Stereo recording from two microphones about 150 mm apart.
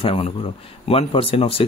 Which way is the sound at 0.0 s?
40° left (ahead or behind).